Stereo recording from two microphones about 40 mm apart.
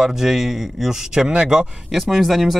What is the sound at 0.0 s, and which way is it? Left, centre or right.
Speech, centre.